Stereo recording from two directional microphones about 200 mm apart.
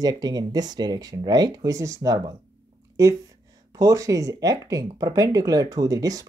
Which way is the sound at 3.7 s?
15° right (ahead or behind).